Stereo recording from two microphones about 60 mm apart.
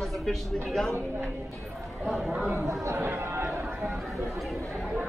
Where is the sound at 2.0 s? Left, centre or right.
Centre.